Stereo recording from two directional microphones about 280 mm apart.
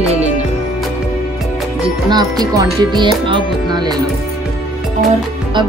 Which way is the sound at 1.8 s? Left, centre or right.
Centre.